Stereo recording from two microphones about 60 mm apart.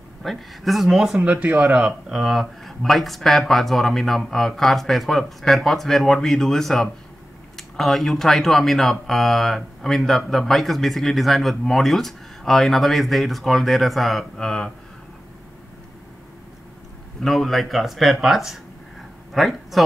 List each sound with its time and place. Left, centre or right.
0.2 s speech: centre
1.2 s speech: right
1.9 s speech: centre
17.2 s speech: centre